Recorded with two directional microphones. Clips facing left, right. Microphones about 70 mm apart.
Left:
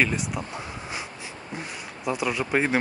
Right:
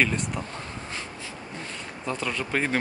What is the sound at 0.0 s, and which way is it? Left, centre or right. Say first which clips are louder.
Speech: even; centre.